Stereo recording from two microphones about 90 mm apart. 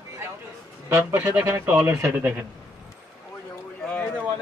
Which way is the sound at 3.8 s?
10° left (ahead or behind).